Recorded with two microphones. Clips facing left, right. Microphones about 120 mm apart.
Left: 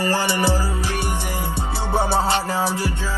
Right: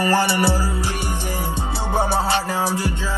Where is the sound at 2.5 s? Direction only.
15° right (ahead or behind).